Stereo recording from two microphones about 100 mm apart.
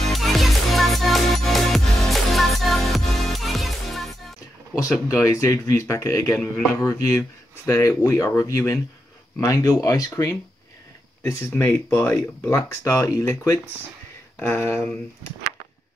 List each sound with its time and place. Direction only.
0.0 s music: centre (ahead or behind)
5.0 s speech: 35° left (ahead or behind)
11.5 s speech: 25° left (ahead or behind)
14.4 s speech: 20° left (ahead or behind)